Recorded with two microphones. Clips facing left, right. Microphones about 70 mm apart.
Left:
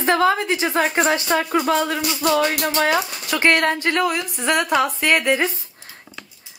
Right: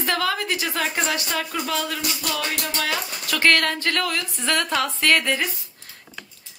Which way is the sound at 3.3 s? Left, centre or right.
Left.